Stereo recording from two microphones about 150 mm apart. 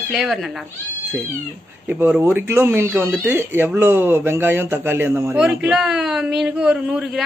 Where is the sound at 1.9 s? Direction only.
10° right (ahead or behind).